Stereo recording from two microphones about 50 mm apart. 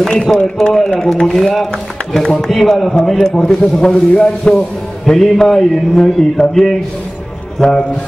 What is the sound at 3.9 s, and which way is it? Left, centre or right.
A man's voice, left.